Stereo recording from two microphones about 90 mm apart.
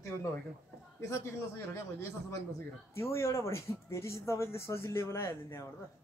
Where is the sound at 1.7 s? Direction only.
30° left (ahead or behind).